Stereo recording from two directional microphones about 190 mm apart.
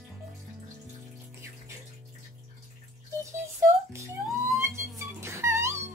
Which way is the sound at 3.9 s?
15° right (ahead or behind).